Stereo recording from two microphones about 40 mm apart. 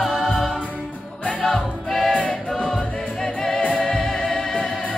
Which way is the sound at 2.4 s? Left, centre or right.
Centre.